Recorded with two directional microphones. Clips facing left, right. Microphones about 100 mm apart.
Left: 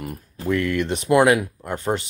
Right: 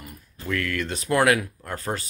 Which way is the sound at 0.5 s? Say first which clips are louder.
Left 6 dB; 20° left (ahead or behind).